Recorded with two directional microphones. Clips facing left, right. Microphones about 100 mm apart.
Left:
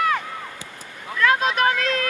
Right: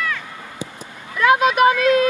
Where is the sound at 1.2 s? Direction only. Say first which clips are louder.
Right 5 dB; 15° right (ahead or behind).